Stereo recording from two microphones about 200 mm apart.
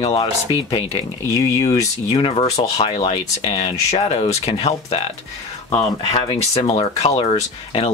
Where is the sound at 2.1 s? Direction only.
30° left (ahead or behind).